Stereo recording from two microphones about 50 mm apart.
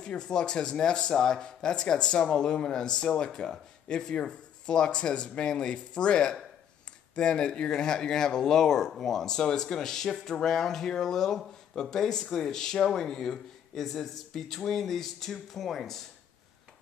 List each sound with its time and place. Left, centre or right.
0.0 s speech: centre